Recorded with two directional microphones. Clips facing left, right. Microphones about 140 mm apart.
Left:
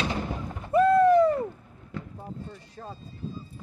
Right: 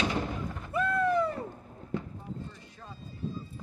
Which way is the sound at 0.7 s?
40° left (ahead or behind).